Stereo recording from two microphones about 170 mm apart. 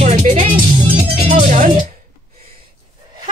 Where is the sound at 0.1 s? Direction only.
50° right (ahead or behind).